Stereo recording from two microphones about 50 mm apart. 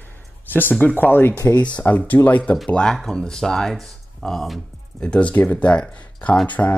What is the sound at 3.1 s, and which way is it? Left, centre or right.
Speech, centre.